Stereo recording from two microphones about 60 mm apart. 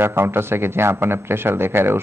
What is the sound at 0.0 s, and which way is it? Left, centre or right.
Speech, right.